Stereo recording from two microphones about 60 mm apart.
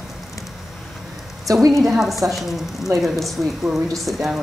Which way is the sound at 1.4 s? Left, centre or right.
Right.